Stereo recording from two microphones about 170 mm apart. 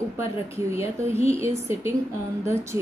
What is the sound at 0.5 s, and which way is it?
A woman's voice, 15° right (ahead or behind).